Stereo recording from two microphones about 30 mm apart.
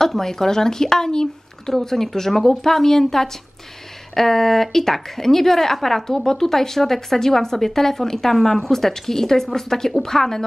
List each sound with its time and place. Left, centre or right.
0.0 s speech: centre